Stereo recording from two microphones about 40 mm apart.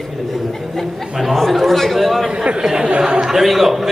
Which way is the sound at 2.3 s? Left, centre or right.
Right.